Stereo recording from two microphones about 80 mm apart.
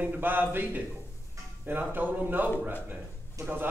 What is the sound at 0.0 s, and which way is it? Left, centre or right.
A man's voice, right.